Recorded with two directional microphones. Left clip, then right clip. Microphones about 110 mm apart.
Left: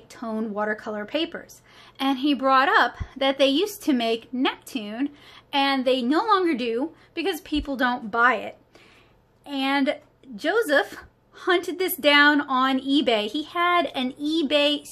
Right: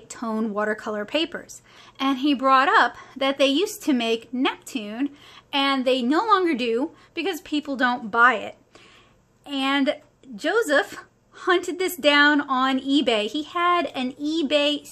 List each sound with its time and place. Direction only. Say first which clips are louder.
0.1 s speech: right 3 dB; 40° right (ahead or behind)
7.2 s speech: even; 20° right (ahead or behind)